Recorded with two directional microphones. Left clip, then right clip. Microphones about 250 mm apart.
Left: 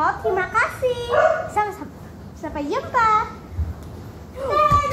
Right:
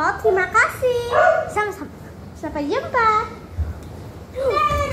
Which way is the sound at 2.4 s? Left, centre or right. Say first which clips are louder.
Right 2 dB; centre.